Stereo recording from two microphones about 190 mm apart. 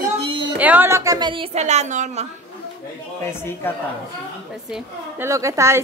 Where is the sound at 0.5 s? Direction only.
10° right (ahead or behind); by 2.2 s 40° right (ahead or behind).